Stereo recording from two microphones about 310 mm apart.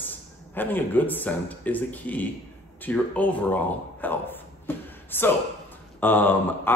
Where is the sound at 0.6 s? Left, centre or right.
Centre.